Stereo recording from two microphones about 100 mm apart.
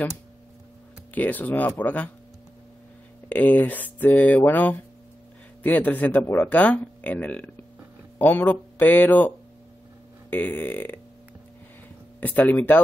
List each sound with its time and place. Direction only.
1.1 s speech: 15° left (ahead or behind)
3.3 s speech: 15° left (ahead or behind)
10.3 s speech: 20° left (ahead or behind)
12.2 s speech: 15° left (ahead or behind)